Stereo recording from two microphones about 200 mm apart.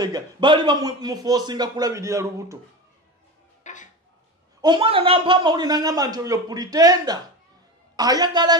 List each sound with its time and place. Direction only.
0.0 s a man's voice: 20° right (ahead or behind)
3.6 s a sound: 40° left (ahead or behind)
4.6 s a man's voice: 25° right (ahead or behind)